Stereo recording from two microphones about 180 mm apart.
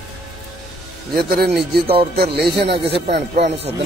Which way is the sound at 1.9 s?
60° right (ahead or behind).